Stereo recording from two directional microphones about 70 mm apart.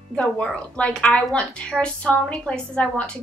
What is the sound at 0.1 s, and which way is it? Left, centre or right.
Female singing, centre.